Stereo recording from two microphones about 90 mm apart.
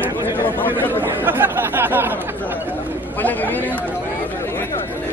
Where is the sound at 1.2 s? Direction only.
20° right (ahead or behind).